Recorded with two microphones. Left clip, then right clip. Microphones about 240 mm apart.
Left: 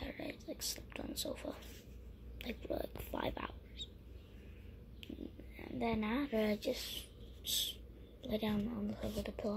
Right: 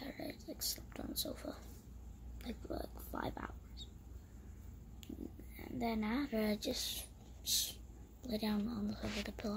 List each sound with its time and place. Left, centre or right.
0.0 s a sound: centre
2.4 s a woman's voice: centre
5.6 s a woman's voice: centre